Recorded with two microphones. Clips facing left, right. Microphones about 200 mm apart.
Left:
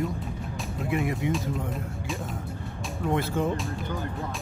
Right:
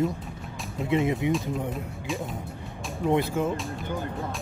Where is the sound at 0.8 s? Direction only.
20° right (ahead or behind).